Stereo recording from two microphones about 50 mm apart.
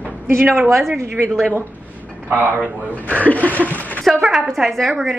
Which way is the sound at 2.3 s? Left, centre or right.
Right.